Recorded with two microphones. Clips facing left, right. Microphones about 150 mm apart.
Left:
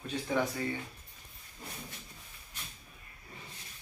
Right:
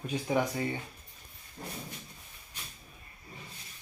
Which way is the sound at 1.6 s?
50° right (ahead or behind).